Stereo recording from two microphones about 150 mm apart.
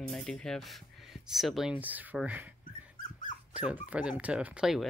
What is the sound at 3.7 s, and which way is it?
Speech, 10° right (ahead or behind).